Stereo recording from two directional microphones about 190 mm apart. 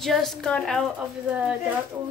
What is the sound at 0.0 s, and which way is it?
Speech, centre (ahead or behind).